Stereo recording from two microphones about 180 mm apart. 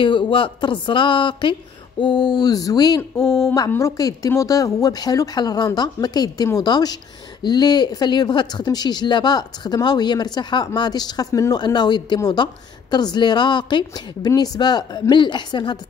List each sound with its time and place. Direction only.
0.0 s speech: 25° left (ahead or behind)